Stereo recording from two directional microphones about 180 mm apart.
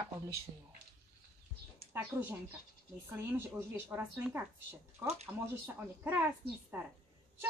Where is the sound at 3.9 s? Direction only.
10° right (ahead or behind).